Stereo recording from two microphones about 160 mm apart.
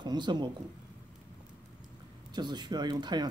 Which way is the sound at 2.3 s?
25° right (ahead or behind).